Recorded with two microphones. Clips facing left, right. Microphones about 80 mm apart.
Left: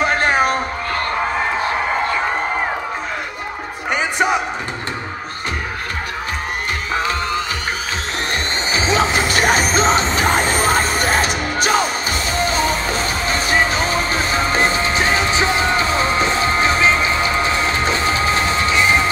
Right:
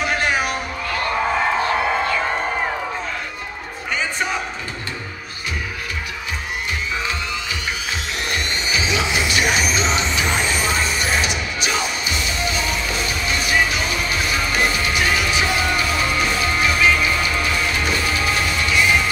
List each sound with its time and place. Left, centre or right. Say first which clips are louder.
0.0 s music: left 5 dB; left
3.9 s music: left 6 dB; left
6.9 s music: left 5 dB; left
8.7 s music: left 5 dB; left